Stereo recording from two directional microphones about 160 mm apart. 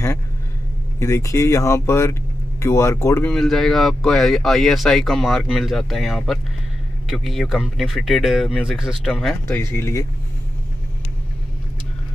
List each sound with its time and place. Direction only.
0.9 s speech: 20° left (ahead or behind)
3.3 s speech: centre (ahead or behind)
9.5 s speech: 15° left (ahead or behind)